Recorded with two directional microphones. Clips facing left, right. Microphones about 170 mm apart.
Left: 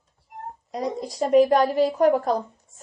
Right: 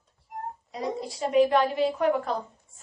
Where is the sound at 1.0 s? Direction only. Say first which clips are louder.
Left 4 dB; 40° left (ahead or behind).